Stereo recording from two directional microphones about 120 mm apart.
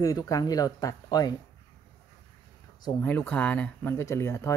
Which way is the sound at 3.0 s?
15° left (ahead or behind).